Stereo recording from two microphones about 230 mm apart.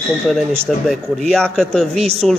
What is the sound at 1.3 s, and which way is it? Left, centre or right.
Speech, centre.